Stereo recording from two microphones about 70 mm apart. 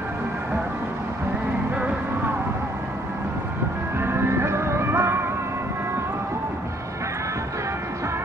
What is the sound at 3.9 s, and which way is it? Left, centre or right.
Music, right.